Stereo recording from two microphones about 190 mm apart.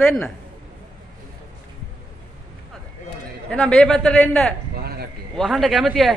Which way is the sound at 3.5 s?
5° left (ahead or behind).